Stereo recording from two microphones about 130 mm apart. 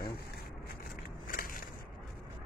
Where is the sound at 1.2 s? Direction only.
90° left.